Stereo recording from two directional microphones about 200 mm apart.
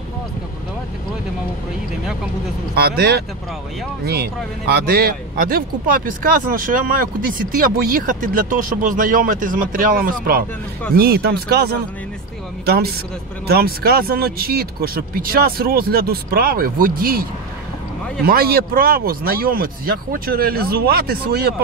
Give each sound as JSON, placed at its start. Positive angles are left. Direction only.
{"t": 2.7, "sound": "speech", "side_deg": -50}
{"t": 18.2, "sound": "speech", "side_deg": -50}